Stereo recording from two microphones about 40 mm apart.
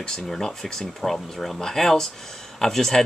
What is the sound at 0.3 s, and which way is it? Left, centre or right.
Speech, centre.